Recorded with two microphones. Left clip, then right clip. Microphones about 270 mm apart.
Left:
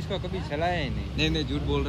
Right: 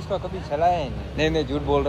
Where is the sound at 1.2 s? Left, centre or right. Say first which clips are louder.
Right 5 dB; centre.